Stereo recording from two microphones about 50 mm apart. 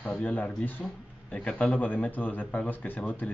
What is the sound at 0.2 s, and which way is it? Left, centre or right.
Speech, left.